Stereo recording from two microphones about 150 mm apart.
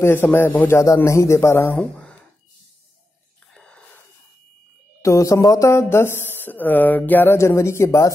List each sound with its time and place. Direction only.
0.0 s speech: 15° left (ahead or behind)
1.8 s a sound: 10° left (ahead or behind)
3.5 s wheeze: 5° left (ahead or behind)
5.0 s speech: 20° left (ahead or behind)